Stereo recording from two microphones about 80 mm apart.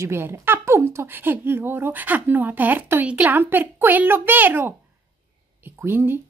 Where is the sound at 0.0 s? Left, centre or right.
Right; by 3.3 s centre.